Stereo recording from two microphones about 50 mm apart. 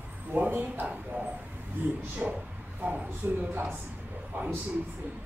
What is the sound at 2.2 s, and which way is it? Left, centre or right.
Speech, centre.